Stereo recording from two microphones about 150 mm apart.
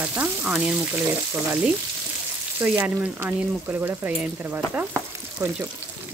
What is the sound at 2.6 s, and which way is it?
Speech, 15° right (ahead or behind).